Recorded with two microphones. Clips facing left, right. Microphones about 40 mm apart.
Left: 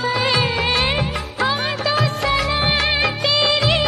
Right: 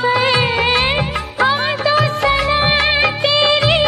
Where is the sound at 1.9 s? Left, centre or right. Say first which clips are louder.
Right 4 dB; centre.